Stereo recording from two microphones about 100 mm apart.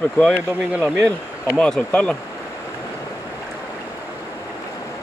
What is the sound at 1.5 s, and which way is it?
Speech, 5° left (ahead or behind).